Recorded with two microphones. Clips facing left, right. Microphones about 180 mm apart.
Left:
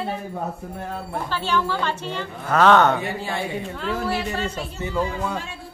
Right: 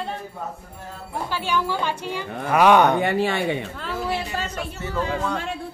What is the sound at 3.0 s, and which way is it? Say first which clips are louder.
Speech: right 6 dB; 70° right (ahead or behind).